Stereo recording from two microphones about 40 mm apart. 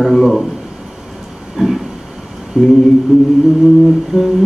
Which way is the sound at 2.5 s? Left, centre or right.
Centre.